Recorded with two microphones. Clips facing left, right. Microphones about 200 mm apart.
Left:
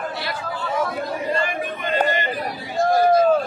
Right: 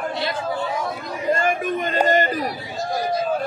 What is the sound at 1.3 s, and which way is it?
Chatter, 45° right (ahead or behind).